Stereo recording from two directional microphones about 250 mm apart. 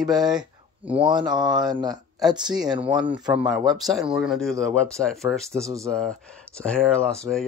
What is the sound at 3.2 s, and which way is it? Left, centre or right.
Speech, centre.